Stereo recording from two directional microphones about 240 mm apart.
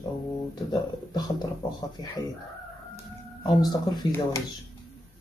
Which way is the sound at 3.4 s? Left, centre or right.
Centre.